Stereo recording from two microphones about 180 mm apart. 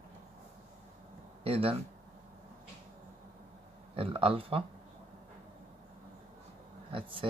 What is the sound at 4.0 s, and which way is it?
Speech, 30° right (ahead or behind).